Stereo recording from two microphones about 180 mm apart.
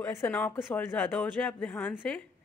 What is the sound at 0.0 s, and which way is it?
Speech, 10° left (ahead or behind).